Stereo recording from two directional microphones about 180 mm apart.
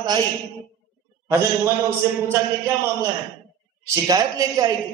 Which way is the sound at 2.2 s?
15° right (ahead or behind).